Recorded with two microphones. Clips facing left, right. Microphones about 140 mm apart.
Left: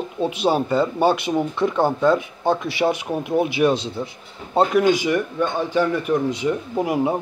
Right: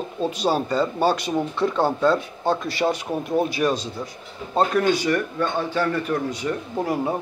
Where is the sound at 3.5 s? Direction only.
25° left (ahead or behind).